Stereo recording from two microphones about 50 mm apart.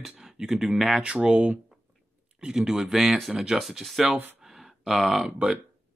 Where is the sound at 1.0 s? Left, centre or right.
Right; by 4.1 s centre.